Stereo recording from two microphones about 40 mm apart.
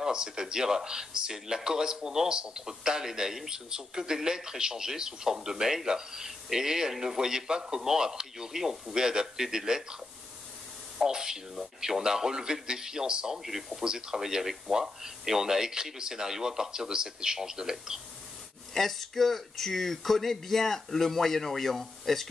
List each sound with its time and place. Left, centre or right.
0.0 s speech: centre
11.0 s speech: centre
13.4 s speech: centre
13.8 s speech: centre
18.7 s speech: centre